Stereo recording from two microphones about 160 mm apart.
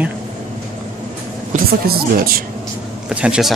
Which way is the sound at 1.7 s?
70° right (ahead or behind).